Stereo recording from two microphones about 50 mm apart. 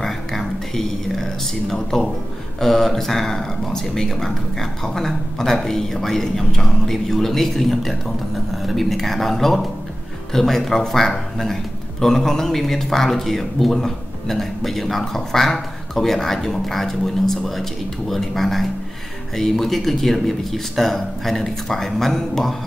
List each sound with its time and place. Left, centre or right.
0.0 s whispering: centre
1.7 s a man's voice: centre